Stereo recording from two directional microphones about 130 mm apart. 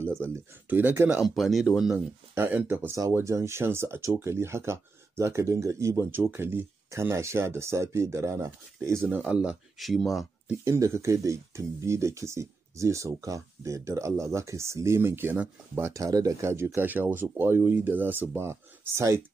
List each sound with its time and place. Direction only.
0.0 s speech: 15° right (ahead or behind)
1.2 s speech: centre (ahead or behind)
2.3 s speech: 15° right (ahead or behind)
9.2 s speech: 10° right (ahead or behind)
10.6 s speech: 20° right (ahead or behind)